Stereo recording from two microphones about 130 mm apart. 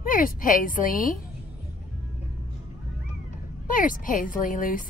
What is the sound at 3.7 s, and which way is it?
A woman's voice, 90° left.